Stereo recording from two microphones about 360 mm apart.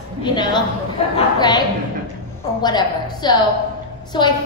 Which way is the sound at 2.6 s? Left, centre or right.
Centre.